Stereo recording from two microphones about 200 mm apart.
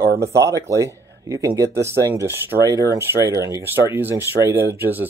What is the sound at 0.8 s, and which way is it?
Speech, 15° right (ahead or behind).